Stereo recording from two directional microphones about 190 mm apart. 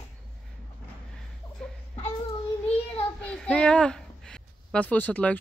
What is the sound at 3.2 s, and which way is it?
Speech, 5° left (ahead or behind).